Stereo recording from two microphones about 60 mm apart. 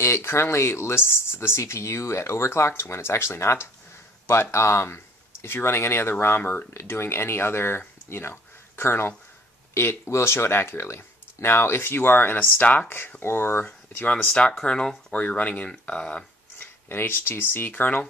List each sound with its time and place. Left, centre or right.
0.0 s speech: left
13.7 s speech: left
14.1 s speech: centre
15.1 s speech: left
16.5 s speech: left